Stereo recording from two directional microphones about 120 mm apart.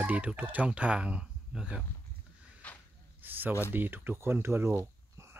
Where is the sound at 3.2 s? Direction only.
15° right (ahead or behind).